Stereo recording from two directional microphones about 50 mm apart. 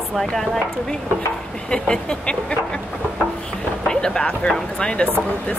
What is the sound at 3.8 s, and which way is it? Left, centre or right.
Speech, centre.